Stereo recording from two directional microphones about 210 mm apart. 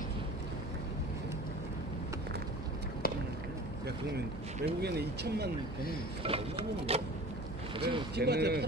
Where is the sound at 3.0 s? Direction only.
45° left (ahead or behind).